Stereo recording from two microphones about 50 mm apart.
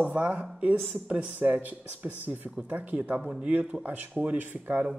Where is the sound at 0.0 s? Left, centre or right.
Right.